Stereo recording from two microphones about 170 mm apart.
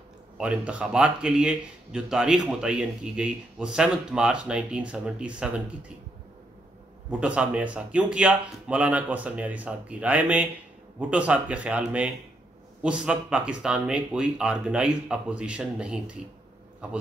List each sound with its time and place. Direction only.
0.4 s speech: 5° right (ahead or behind)
7.1 s a man's voice: 5° right (ahead or behind)